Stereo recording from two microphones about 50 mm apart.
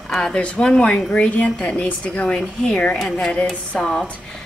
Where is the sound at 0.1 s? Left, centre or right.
Centre.